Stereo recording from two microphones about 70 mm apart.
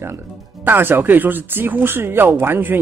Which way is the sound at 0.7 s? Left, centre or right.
Right.